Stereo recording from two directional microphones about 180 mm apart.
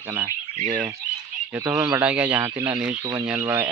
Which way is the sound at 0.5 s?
45° right (ahead or behind).